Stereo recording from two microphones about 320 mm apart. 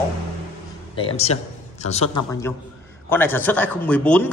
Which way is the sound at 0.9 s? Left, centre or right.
Centre.